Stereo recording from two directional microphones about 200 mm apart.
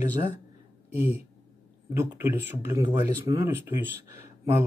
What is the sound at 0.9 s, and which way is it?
Speech, 30° left (ahead or behind).